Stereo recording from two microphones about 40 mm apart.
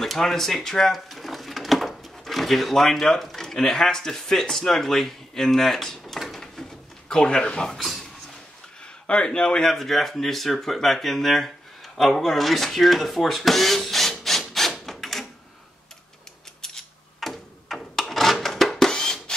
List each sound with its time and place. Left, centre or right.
0.0 s drawer open or close: centre
3.3 s speech: centre
6.1 s a sound: centre
7.2 s a man's voice: left
9.0 s a man's voice: left
9.7 s speech: centre
14.9 s printer: centre
16.6 s a sound: centre